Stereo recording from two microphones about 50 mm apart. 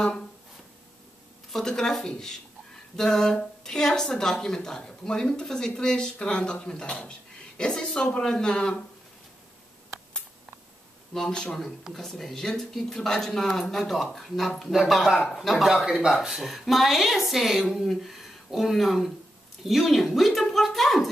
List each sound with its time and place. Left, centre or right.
1.5 s speech: centre
11.1 s speech: centre